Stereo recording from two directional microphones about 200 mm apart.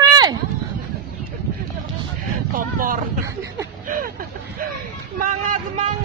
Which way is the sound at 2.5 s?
45° right (ahead or behind).